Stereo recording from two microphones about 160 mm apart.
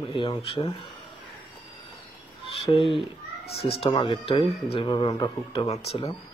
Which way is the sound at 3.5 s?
40° left (ahead or behind).